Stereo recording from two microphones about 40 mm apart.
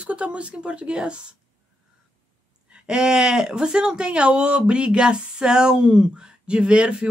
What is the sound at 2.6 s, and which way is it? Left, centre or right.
Speech, right.